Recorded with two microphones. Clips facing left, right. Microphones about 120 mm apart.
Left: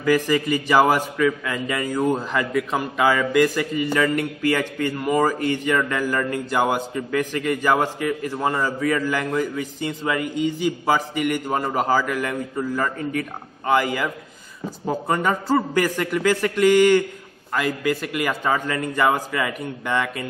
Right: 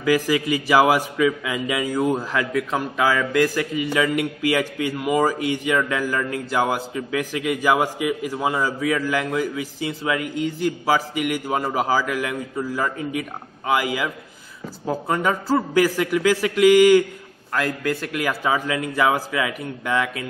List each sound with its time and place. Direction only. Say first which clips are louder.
0.0 s a man's voice: even; 5° right (ahead or behind)